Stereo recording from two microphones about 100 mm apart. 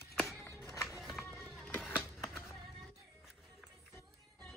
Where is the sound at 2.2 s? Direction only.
25° left (ahead or behind).